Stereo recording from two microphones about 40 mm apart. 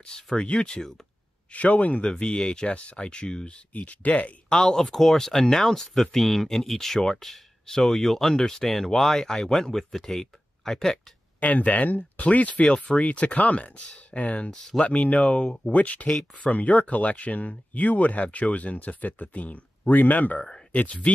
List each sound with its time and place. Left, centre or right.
0.0 s speech: centre
1.5 s speech: left
3.7 s speech: left
4.5 s speech: centre
11.3 s speech: left